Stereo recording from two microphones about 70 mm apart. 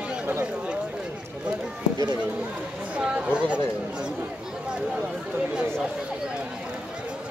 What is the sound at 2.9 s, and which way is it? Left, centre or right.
Chatter, centre.